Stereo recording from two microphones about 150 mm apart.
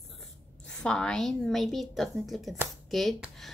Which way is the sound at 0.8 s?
5° left (ahead or behind).